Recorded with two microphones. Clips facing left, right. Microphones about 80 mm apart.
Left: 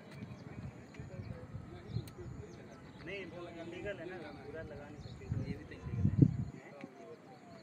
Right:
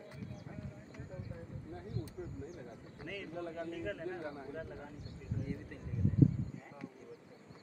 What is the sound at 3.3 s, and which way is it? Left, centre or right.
Speech, right.